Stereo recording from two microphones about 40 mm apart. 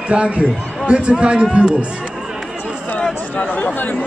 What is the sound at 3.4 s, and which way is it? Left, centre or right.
Speech, left.